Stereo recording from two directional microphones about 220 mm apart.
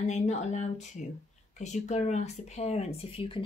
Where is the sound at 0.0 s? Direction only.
30° left (ahead or behind).